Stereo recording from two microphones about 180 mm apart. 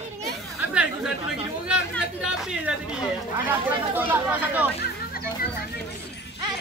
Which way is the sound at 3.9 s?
10° right (ahead or behind).